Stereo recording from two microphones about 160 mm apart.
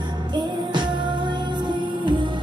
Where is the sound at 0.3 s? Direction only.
30° right (ahead or behind).